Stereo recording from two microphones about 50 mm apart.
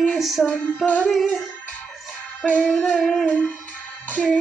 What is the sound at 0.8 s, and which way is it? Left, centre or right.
Music, left.